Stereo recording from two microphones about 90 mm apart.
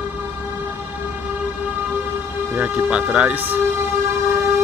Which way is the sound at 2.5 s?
15° right (ahead or behind).